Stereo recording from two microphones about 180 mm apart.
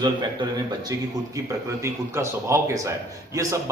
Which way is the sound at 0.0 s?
20° right (ahead or behind).